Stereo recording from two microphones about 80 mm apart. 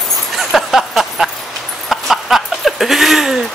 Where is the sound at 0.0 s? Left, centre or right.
Centre.